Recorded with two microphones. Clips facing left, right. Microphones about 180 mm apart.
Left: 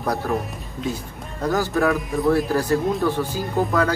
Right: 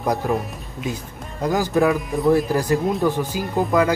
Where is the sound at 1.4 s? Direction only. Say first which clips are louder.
Right 2 dB; 15° right (ahead or behind).